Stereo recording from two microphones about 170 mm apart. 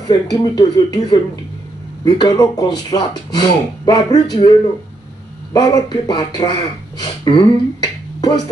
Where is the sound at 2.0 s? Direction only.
25° left (ahead or behind).